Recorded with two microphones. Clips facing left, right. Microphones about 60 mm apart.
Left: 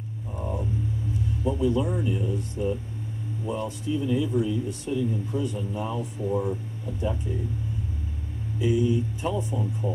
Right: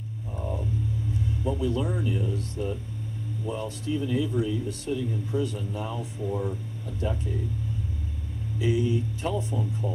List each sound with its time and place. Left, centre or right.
0.3 s a sound: centre
1.4 s speech: centre
8.6 s speech: centre